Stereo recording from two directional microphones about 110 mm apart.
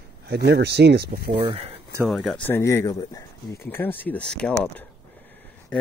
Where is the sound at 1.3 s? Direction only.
50° right (ahead or behind).